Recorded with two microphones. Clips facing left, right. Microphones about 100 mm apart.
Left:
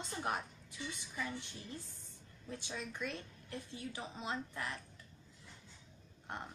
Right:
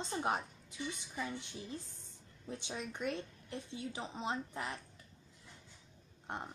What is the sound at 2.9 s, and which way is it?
A woman's voice, 25° right (ahead or behind).